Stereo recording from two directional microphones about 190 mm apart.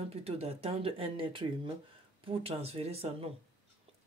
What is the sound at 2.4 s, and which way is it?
Speech, 30° right (ahead or behind).